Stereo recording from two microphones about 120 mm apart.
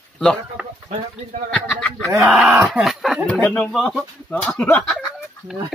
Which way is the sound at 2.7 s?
Centre (ahead or behind).